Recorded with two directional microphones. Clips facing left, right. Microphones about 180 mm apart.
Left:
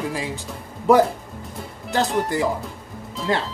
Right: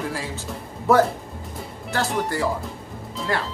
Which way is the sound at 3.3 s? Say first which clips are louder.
Left 3 dB; 20° left (ahead or behind).